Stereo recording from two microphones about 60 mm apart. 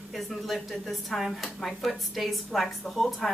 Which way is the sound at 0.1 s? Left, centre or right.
Centre.